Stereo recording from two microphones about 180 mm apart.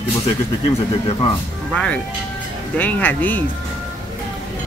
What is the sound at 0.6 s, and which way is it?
Speech, 30° left (ahead or behind).